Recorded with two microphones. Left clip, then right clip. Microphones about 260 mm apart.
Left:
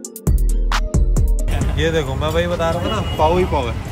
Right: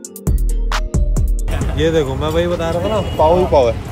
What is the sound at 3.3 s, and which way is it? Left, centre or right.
Speech, centre.